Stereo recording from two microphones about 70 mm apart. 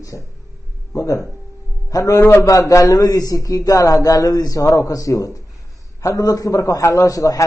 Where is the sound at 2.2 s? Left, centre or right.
Left.